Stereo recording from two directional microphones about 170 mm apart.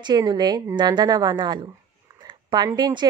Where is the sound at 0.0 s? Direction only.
25° right (ahead or behind).